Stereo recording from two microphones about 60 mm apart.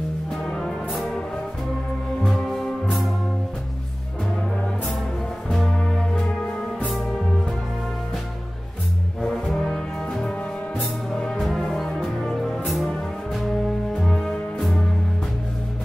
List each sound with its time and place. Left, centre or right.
0.5 s music: centre
5.7 s music: centre
6.9 s music: centre
9.5 s brass instrument: centre
11.1 s music: centre